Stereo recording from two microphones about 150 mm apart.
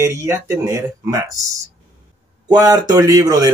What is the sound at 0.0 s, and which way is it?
Speech, 15° right (ahead or behind).